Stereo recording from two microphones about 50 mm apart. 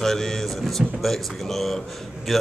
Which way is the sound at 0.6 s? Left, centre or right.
Centre.